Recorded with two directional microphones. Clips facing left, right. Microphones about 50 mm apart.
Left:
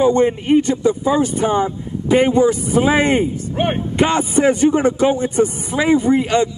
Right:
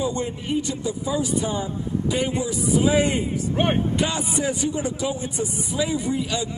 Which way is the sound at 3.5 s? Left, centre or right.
Centre.